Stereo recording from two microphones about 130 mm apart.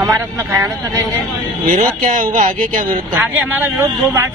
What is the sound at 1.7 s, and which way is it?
Speech, 90° right.